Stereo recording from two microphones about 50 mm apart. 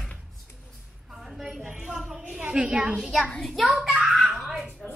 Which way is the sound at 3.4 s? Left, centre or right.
Centre.